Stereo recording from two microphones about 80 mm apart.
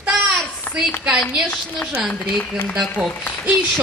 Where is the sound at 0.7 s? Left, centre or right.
Left.